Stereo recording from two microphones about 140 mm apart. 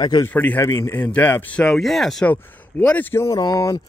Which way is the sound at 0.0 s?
30° left (ahead or behind).